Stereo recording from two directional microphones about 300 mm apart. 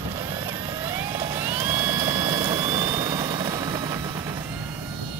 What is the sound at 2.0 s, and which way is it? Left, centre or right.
Vehicle, centre.